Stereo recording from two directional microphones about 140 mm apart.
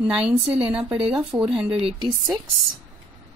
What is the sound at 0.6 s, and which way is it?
Speech, 5° right (ahead or behind).